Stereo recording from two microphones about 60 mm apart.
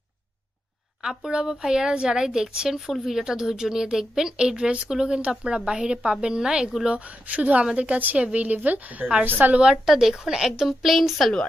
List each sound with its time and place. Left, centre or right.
1.0 s a woman's voice: centre
9.6 s a woman's voice: centre